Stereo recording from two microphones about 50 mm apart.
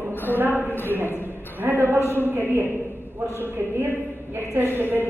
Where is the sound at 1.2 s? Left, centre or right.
Right.